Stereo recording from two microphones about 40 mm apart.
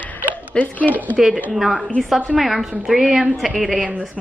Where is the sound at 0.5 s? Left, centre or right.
Left.